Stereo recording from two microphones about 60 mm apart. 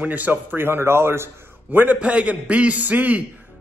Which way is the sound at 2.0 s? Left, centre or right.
Centre.